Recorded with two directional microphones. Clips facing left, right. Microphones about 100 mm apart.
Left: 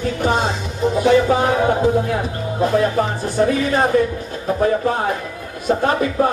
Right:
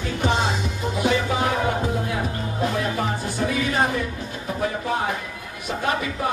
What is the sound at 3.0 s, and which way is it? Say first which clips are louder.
Speech: left 7 dB; 40° left (ahead or behind).